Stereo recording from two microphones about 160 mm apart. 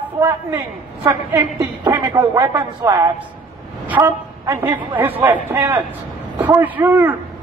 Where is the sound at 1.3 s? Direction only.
20° right (ahead or behind).